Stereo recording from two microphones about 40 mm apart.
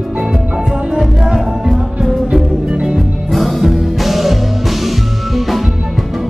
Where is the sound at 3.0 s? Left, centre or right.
Centre.